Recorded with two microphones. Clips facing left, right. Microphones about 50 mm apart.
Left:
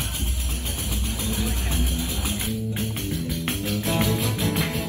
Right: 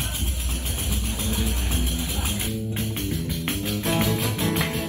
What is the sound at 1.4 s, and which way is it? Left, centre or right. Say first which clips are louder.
Music: even; left.